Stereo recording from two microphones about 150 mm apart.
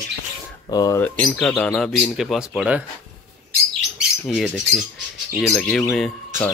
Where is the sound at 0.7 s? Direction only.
25° left (ahead or behind).